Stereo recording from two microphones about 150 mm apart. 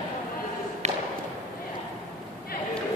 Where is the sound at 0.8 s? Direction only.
50° right (ahead or behind).